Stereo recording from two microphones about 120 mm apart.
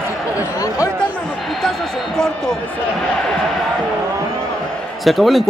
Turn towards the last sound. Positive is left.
turn(degrees=0)  # may be behind; listen again after turning